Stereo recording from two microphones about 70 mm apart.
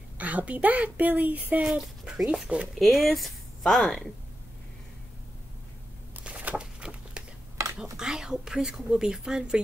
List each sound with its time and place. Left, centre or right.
0.2 s a woman's voice: right
1.6 s speech: centre
2.2 s speech: centre
2.8 s a woman's voice: centre
6.2 s a sound: centre
7.8 s speech: centre